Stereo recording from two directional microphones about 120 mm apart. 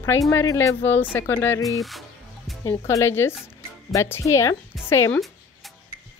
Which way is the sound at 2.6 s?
25° left (ahead or behind).